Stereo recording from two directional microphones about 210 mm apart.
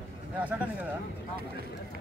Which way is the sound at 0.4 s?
5° right (ahead or behind).